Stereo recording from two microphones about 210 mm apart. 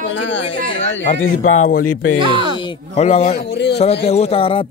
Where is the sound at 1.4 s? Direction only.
35° left (ahead or behind).